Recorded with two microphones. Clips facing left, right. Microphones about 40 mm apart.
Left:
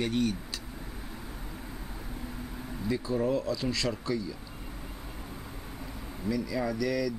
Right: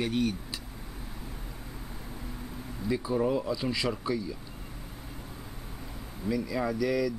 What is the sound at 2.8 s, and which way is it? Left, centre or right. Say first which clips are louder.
Speech: right 1 dB; centre.